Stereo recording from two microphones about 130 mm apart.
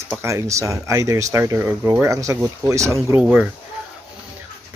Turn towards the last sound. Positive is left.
turn(degrees=-10)  # may be behind; listen again after turning